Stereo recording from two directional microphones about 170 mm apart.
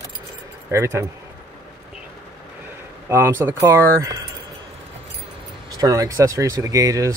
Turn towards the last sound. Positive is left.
turn(degrees=-20)  # may be behind; listen again after turning